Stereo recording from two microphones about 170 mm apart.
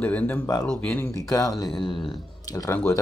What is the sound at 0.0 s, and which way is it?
Speech, 10° left (ahead or behind).